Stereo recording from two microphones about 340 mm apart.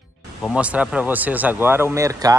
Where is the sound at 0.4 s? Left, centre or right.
Centre.